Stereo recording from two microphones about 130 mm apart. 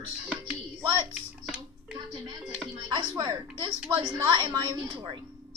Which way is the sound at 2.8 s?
30° right (ahead or behind).